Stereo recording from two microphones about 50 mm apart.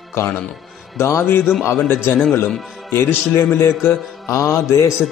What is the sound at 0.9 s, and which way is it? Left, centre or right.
A man's voice, left.